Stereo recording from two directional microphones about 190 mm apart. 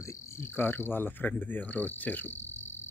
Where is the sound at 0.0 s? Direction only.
15° left (ahead or behind).